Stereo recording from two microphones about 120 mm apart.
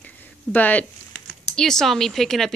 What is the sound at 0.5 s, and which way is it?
Speech, 15° left (ahead or behind).